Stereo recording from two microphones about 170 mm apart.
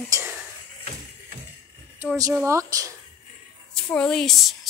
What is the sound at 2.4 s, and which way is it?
Speech, 20° right (ahead or behind).